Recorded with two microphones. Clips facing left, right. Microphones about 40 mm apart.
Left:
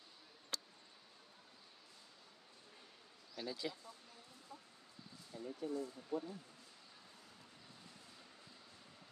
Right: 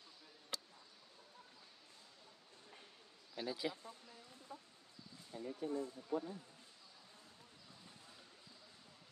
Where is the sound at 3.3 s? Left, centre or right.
Centre.